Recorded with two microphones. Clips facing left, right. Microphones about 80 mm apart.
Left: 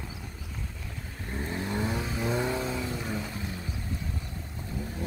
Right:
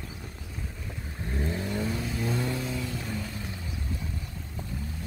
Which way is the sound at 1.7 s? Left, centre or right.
Left.